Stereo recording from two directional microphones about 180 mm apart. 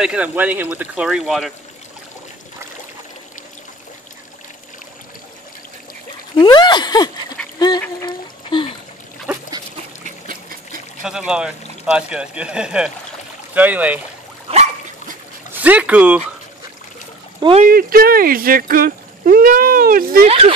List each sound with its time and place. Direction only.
0.0 s speech: 5° right (ahead or behind)
6.3 s speech: 25° left (ahead or behind)
7.5 s goose: 25° left (ahead or behind)
8.0 s a sound: 25° left (ahead or behind)
10.0 s trickle: 50° right (ahead or behind)
11.0 s speech: 5° right (ahead or behind)
14.5 s dog: 40° right (ahead or behind)
15.6 s speech: 10° right (ahead or behind)
17.4 s speech: 30° right (ahead or behind)
17.6 s speech: 55° right (ahead or behind)
20.2 s speech: 35° right (ahead or behind)